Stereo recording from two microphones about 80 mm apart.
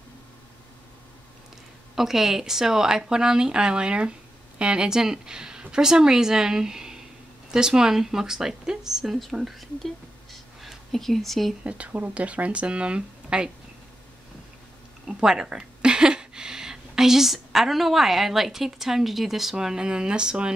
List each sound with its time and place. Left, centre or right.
2.0 s speech: centre
11.6 s speech: centre
15.0 s speech: centre